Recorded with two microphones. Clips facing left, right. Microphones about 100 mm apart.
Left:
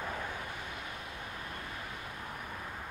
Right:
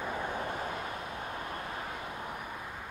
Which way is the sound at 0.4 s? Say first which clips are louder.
Right 7 dB; 40° right (ahead or behind).